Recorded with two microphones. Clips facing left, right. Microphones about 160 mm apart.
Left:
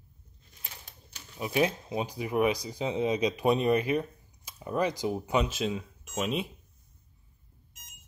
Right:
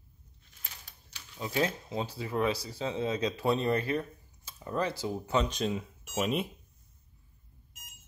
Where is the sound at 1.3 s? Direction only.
15° left (ahead or behind); by 6.5 s centre (ahead or behind).